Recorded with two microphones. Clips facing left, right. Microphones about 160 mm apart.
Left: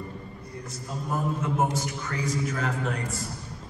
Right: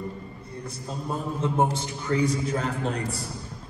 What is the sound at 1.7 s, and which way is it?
A man's voice, 30° right (ahead or behind).